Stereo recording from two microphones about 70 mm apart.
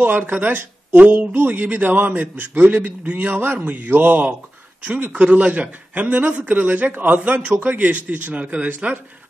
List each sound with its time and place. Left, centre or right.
0.0 s speech: right